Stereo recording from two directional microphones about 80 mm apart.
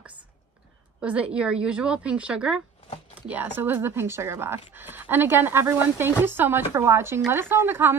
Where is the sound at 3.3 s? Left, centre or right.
Right.